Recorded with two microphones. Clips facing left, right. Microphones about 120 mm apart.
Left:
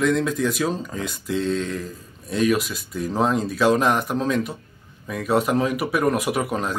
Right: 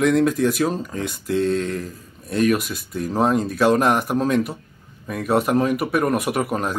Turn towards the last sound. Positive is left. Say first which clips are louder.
# right 1 dB
turn(degrees=-5)  # may be behind; listen again after turning